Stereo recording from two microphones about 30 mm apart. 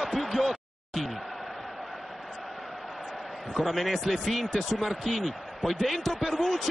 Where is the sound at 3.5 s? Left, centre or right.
Centre.